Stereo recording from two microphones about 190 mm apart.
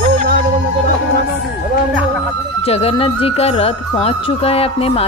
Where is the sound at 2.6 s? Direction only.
30° left (ahead or behind).